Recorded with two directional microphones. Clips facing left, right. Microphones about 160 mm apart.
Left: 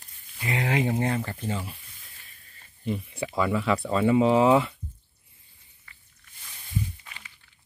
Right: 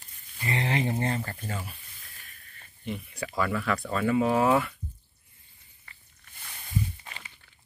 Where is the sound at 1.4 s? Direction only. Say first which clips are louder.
Left 5 dB; 25° left (ahead or behind).